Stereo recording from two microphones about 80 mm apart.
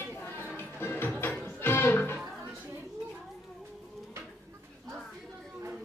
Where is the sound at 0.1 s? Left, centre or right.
Left.